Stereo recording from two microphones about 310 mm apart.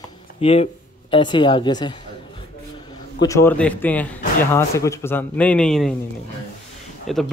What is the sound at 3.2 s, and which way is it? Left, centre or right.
Speech, centre.